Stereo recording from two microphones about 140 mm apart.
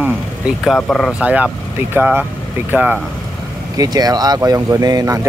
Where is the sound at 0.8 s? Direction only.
10° left (ahead or behind).